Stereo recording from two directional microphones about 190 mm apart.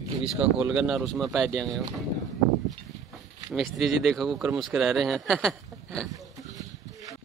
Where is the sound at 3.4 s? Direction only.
Centre (ahead or behind).